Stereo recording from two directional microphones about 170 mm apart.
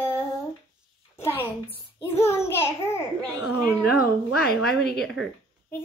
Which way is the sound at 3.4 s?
Centre (ahead or behind).